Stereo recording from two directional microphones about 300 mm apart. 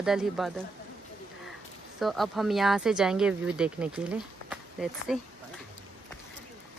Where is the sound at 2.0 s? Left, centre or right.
Centre.